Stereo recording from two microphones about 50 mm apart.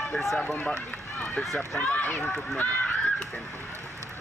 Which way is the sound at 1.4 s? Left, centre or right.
Centre.